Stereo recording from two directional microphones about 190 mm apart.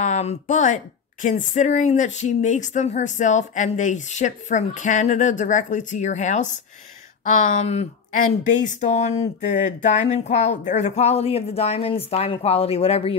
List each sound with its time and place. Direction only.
0.0 s speech: 35° left (ahead or behind)
7.5 s speech: 35° left (ahead or behind)